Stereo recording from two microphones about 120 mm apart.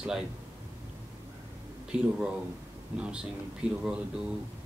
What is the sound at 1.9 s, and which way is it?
Speech, 5° right (ahead or behind).